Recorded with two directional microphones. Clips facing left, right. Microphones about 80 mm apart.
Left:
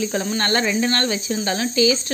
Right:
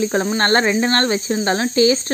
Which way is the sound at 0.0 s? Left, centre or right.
Right.